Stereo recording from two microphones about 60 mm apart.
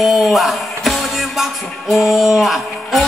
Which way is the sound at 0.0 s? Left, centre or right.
Centre.